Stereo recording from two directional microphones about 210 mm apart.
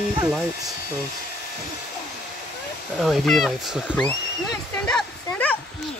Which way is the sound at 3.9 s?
5° left (ahead or behind).